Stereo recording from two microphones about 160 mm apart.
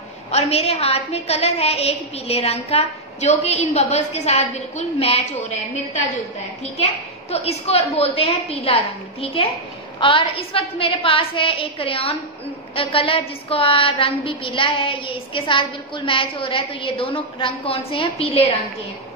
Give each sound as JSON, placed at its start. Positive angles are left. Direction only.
{"t": 0.3, "sound": "a woman's voice", "side_deg": 40}
{"t": 6.8, "sound": "a woman's voice", "side_deg": 40}